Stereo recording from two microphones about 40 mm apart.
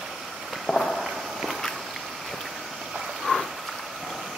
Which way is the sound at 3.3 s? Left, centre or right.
Centre.